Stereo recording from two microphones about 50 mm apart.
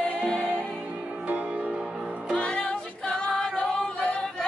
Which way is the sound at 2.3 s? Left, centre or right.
Centre.